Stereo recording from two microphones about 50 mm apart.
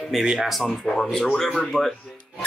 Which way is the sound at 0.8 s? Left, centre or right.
Centre.